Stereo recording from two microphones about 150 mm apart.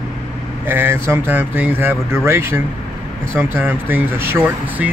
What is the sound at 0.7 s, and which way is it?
Speech, 15° right (ahead or behind).